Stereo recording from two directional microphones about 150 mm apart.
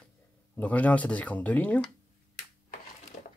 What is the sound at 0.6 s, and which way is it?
Speech, 10° left (ahead or behind).